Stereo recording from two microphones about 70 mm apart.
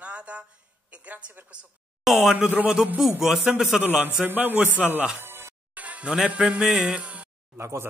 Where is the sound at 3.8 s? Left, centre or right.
Centre.